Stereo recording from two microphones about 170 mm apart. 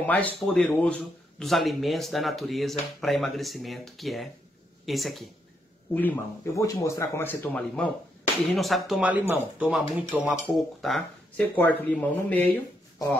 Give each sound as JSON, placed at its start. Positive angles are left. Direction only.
{"t": 0.0, "sound": "speech", "side_deg": 10}
{"t": 5.9, "sound": "speech", "side_deg": 15}